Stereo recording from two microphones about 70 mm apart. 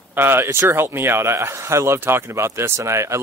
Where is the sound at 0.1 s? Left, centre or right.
Right.